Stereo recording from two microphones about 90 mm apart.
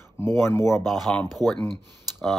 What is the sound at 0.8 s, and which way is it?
Speech, centre (ahead or behind).